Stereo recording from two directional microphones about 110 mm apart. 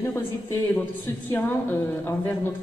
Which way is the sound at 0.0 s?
20° left (ahead or behind).